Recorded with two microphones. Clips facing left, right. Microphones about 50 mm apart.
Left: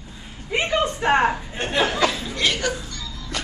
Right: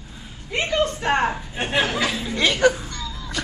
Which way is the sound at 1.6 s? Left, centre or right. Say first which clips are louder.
Left 1 dB; centre.